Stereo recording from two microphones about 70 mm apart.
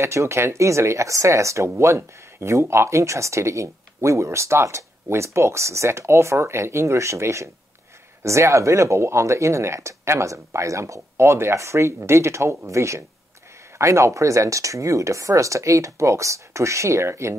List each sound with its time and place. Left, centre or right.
0.0 s speech: right